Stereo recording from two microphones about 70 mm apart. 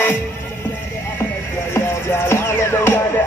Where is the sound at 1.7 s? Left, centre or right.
Left.